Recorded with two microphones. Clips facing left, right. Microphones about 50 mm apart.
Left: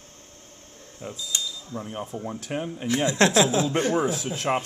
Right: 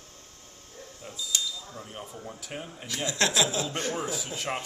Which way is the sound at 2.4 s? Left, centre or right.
Left.